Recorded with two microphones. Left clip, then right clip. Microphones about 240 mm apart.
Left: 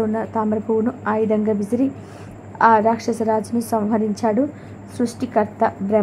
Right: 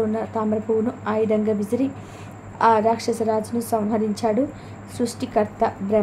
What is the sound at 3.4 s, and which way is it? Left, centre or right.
Speech, centre.